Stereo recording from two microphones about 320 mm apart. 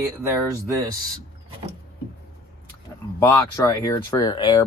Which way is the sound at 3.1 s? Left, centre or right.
Centre.